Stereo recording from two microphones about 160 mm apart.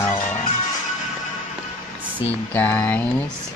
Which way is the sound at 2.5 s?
10° left (ahead or behind).